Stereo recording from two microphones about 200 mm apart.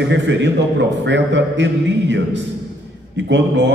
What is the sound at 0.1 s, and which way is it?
A man's voice, 65° right (ahead or behind).